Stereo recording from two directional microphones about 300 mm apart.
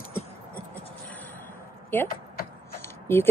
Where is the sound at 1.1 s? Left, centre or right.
Centre.